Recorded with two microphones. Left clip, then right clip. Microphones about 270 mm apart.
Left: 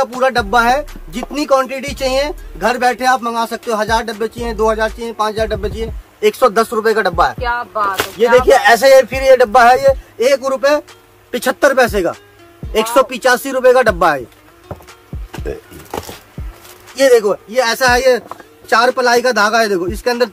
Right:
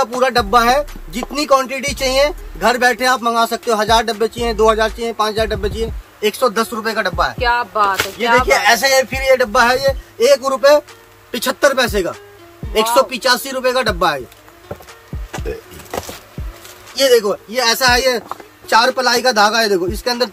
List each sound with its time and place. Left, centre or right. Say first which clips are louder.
0.0 s speech: left 1 dB; centre; by 7.3 s left
7.3 s music: right 2 dB; right
7.9 s a man's voice: left 3 dB; left
16.9 s a man's voice: left 2 dB; centre